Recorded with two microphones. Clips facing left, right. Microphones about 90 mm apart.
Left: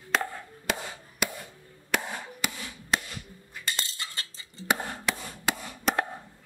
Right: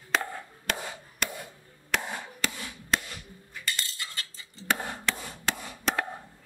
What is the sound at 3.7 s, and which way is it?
Cutlery, 25° left (ahead or behind).